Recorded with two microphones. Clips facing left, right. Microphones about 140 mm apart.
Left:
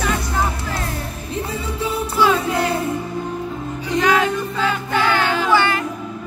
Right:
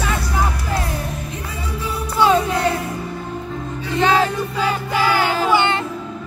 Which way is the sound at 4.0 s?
25° right (ahead or behind).